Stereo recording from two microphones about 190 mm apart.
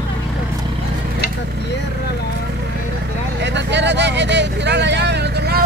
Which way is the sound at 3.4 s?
65° right (ahead or behind).